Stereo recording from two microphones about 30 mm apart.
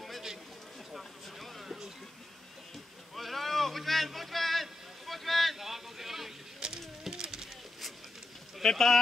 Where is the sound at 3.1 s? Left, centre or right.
Centre.